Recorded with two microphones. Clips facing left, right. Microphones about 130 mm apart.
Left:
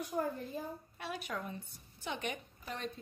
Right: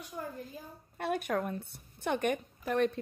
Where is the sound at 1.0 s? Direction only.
55° right (ahead or behind).